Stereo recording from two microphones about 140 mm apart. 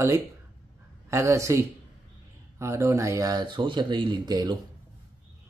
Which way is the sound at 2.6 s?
20° right (ahead or behind).